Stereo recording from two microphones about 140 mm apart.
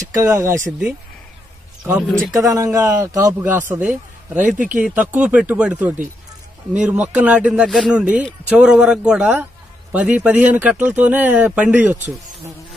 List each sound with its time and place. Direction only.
0.1 s speech: 20° right (ahead or behind)
0.7 s speech: 5° right (ahead or behind)
2.0 s speech: centre (ahead or behind)
2.3 s speech: 25° right (ahead or behind)
3.8 s speech: 5° right (ahead or behind)